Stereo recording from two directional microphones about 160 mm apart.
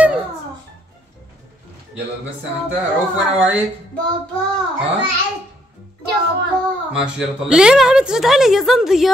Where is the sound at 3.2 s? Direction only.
10° right (ahead or behind).